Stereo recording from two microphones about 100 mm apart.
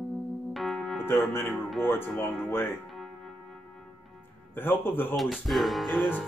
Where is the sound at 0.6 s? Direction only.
Centre (ahead or behind).